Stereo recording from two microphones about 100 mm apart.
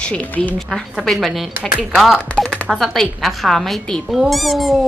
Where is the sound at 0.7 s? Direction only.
Centre (ahead or behind).